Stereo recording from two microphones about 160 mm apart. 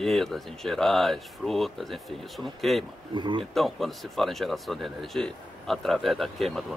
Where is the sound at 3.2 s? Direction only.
30° right (ahead or behind).